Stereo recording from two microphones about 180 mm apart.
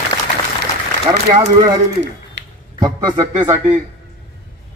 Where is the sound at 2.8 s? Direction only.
20° right (ahead or behind).